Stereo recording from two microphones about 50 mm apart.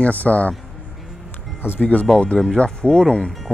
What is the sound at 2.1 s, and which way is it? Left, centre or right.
Speech, centre.